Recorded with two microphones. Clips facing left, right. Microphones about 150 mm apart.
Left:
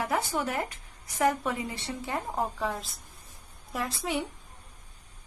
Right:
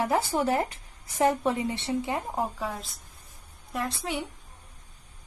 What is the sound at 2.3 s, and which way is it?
A woman's voice, centre (ahead or behind).